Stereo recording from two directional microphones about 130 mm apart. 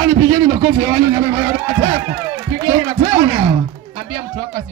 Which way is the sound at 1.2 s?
20° right (ahead or behind).